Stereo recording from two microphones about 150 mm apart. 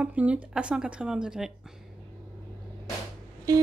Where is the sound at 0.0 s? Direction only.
10° right (ahead or behind).